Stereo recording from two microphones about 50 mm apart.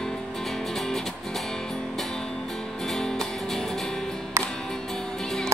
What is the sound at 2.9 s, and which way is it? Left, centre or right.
Music, centre.